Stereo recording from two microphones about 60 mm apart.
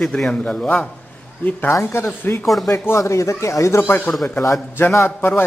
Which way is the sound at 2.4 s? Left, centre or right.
Centre.